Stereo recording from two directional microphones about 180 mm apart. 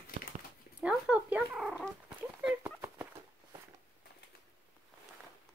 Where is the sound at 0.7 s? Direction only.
5° right (ahead or behind).